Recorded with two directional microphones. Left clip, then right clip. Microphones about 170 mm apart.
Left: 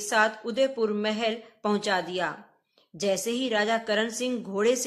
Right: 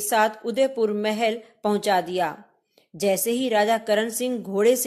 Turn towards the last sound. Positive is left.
turn(degrees=-30)  # may be behind; listen again after turning